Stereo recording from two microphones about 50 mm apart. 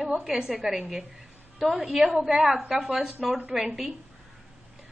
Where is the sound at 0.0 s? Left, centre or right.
Centre.